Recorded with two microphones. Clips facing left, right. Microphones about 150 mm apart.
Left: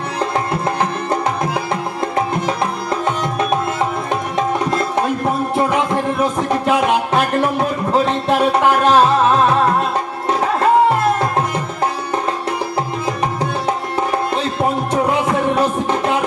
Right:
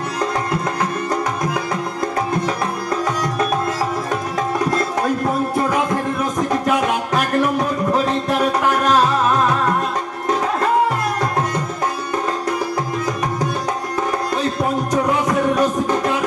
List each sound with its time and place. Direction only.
1.4 s music: 30° left (ahead or behind)
4.1 s music: 25° left (ahead or behind)
6.3 s music: 30° left (ahead or behind)
14.3 s music: 25° left (ahead or behind)